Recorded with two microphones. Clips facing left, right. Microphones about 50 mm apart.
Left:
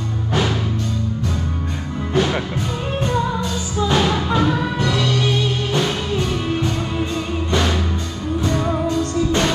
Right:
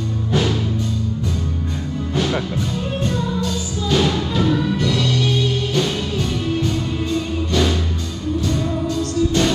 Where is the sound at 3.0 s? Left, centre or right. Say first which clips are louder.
Left 3 dB; centre.